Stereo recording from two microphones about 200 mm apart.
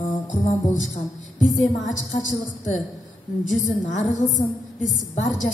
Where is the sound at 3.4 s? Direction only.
35° left (ahead or behind).